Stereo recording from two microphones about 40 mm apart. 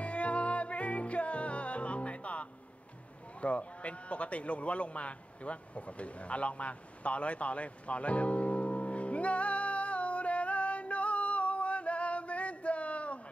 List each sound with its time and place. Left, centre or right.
0.0 s music: left
3.3 s sheep: left